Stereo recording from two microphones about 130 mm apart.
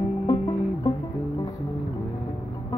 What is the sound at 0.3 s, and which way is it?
Music, 30° left (ahead or behind).